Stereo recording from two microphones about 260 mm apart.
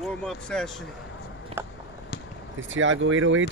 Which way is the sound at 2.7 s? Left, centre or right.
Right.